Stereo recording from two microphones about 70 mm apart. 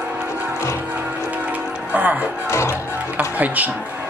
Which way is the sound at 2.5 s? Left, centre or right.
Left.